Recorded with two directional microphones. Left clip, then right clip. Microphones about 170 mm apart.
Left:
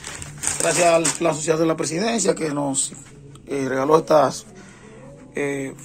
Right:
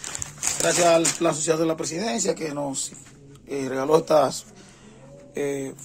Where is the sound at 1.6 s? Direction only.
10° right (ahead or behind).